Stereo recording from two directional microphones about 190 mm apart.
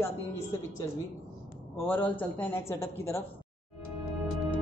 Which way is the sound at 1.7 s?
10° left (ahead or behind).